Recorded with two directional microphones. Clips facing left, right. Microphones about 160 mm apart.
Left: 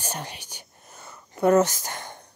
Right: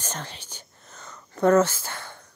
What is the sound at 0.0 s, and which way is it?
Whispering, 15° left (ahead or behind).